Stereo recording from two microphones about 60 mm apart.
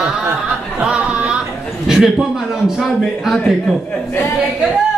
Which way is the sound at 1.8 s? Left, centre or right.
Centre.